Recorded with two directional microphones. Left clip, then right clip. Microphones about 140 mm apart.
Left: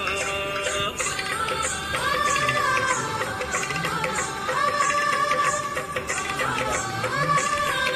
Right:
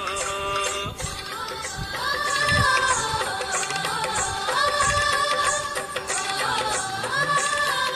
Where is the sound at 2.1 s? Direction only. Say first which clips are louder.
Right 1 dB; 60° right (ahead or behind).